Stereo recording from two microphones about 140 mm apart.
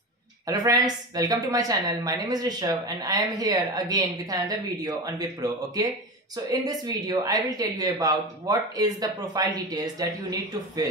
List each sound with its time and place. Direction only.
0.5 s a woman's voice: 25° right (ahead or behind)